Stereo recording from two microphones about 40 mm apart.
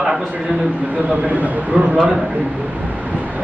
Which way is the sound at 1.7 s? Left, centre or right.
Right.